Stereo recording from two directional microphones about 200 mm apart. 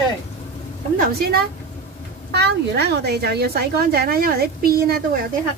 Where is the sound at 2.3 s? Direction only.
55° right (ahead or behind).